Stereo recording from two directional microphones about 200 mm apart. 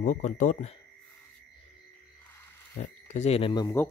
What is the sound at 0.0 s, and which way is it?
Speech, 35° left (ahead or behind).